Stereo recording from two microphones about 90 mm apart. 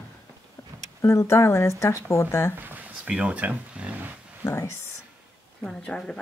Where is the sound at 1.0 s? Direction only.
30° left (ahead or behind).